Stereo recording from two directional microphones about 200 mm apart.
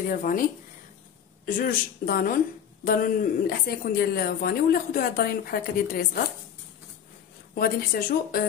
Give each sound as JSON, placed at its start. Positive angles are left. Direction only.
{"t": 0.1, "sound": "a woman's voice", "side_deg": 45}
{"t": 7.5, "sound": "a woman's voice", "side_deg": 50}